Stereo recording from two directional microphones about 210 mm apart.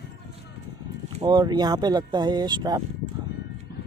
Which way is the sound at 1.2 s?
20° right (ahead or behind).